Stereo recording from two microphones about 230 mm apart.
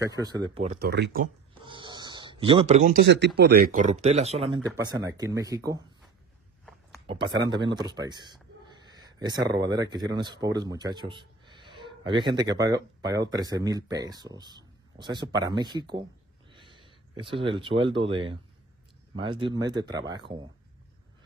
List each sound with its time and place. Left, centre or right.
0.0 s a man's voice: centre
0.7 s speech: right
1.5 s a sound: right
3.0 s speech: right
4.7 s a man's voice: centre
7.1 s a man's voice: right